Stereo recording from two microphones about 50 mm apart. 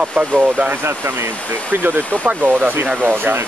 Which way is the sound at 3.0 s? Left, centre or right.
Right.